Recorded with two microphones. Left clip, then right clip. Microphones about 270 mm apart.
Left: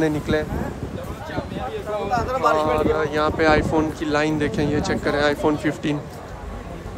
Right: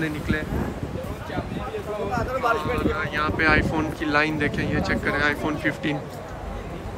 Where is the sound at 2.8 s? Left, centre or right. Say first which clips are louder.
Left 5 dB; centre.